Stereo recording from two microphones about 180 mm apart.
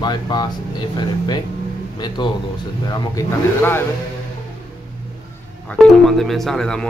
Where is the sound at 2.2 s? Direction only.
25° left (ahead or behind).